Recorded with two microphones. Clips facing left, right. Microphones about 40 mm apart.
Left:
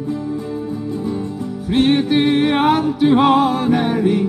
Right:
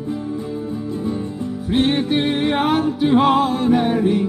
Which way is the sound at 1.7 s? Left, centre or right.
Left.